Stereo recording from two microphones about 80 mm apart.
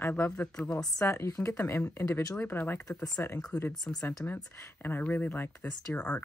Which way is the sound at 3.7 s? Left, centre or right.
Centre.